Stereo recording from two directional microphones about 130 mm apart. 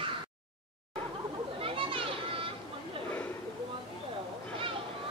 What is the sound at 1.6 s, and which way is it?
Children playing, 45° right (ahead or behind).